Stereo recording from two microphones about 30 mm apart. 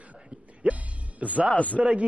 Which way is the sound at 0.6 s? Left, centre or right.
Right.